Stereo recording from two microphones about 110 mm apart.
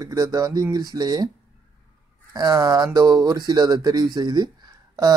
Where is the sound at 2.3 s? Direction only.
35° right (ahead or behind).